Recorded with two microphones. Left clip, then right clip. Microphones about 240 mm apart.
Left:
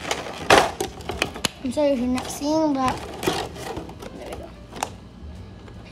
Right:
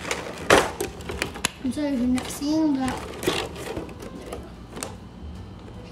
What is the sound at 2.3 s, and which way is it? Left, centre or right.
Speech, left.